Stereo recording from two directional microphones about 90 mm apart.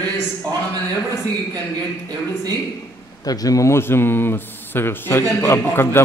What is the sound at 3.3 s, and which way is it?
Speech, 45° left (ahead or behind).